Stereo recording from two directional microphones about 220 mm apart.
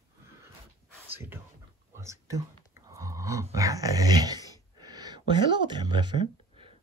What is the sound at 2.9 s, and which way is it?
Speech, 15° right (ahead or behind).